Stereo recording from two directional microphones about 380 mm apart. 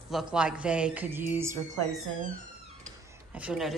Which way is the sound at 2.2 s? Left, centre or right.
Right.